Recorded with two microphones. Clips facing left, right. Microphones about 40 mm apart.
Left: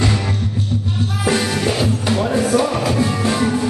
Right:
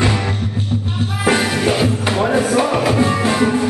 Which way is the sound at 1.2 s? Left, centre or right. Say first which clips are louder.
Right 3 dB; right.